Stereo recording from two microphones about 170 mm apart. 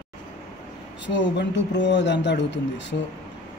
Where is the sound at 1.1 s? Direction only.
90° left.